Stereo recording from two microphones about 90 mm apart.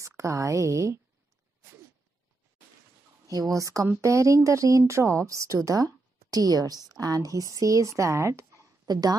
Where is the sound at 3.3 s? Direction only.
40° right (ahead or behind).